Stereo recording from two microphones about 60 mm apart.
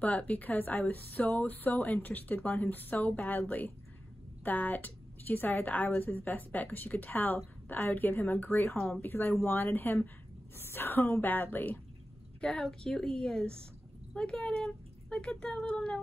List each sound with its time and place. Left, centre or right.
0.0 s a woman's voice: left
12.4 s a woman's voice: centre